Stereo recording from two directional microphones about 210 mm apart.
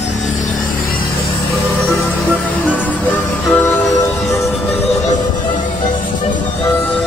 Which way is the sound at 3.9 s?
15° left (ahead or behind).